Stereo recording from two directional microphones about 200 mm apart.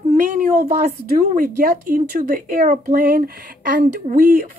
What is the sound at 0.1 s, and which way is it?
Speech, 40° right (ahead or behind).